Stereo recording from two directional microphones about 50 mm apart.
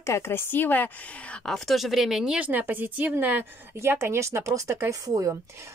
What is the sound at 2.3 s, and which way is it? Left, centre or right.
A woman's voice, right.